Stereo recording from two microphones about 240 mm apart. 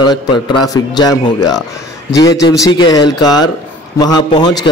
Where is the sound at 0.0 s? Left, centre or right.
Centre.